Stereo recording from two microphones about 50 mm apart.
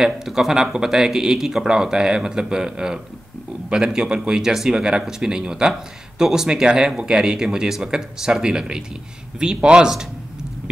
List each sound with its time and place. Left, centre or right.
0.0 s speech: centre